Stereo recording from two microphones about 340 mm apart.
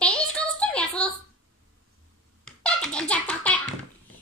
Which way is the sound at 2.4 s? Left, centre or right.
Centre.